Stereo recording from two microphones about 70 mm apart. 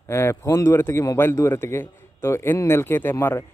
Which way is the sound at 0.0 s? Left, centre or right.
Left.